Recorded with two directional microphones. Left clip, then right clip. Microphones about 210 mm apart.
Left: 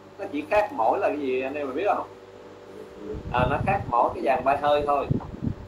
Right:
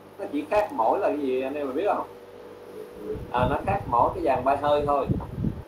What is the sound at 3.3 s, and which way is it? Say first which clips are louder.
Speech: left 1 dB; 20° left (ahead or behind).